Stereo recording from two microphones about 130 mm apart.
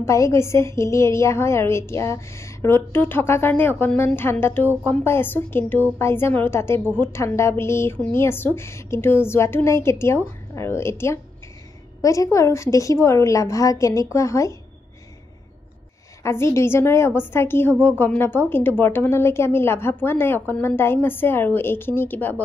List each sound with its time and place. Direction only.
0.0 s a woman's voice: 20° left (ahead or behind)
16.2 s a woman's voice: 20° left (ahead or behind)